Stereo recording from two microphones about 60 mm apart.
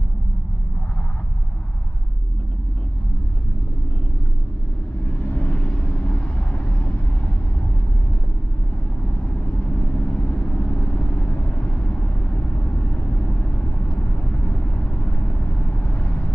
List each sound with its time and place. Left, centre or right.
5.0 s vehicle: left
9.2 s vehicle: left